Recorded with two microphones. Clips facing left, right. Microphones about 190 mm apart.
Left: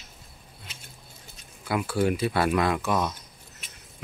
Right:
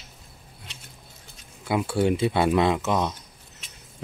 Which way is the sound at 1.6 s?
25° right (ahead or behind).